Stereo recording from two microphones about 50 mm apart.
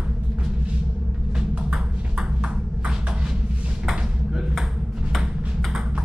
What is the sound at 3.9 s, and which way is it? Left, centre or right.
Ping, centre.